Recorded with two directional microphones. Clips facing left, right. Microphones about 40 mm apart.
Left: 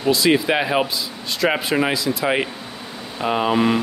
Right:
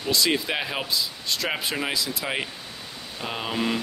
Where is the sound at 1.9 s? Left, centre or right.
Centre.